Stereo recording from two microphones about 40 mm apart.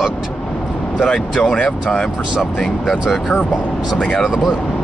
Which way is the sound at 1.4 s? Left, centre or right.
Left.